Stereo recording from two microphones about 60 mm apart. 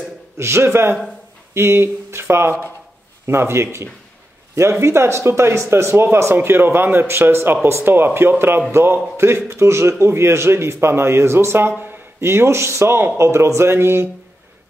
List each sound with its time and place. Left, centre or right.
0.4 s a man's voice: right
6.3 s a man's voice: right